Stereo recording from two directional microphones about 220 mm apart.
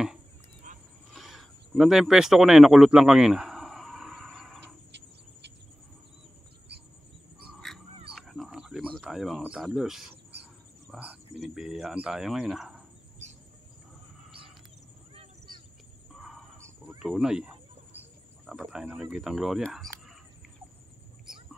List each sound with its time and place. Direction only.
0.7 s roaring cats: 35° right (ahead or behind)
1.1 s a sound: centre (ahead or behind)
7.6 s dog: centre (ahead or behind)
10.9 s speech: 5° right (ahead or behind)
16.2 s crow: centre (ahead or behind)
16.5 s cricket: 10° right (ahead or behind)
17.0 s a sound: centre (ahead or behind)
18.5 s speech: centre (ahead or behind)
21.3 s a sound: 5° right (ahead or behind)